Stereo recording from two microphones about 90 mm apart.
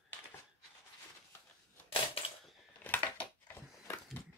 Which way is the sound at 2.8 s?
20° left (ahead or behind).